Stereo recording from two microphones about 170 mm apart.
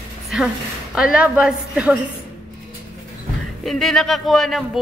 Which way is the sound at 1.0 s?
5° right (ahead or behind).